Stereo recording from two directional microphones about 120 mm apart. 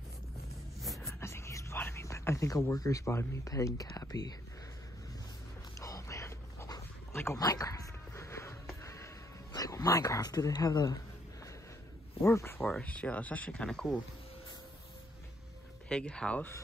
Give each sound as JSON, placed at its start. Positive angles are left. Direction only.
{"t": 0.8, "sound": "a sound", "side_deg": 0}
{"t": 1.2, "sound": "speech", "side_deg": 20}
{"t": 5.8, "sound": "dog", "side_deg": 25}
{"t": 8.8, "sound": "music", "side_deg": 25}
{"t": 9.5, "sound": "speech", "side_deg": 30}
{"t": 12.2, "sound": "speech", "side_deg": 20}
{"t": 15.9, "sound": "speech", "side_deg": 10}